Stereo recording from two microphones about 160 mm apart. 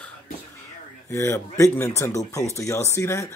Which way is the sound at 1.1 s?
15° left (ahead or behind).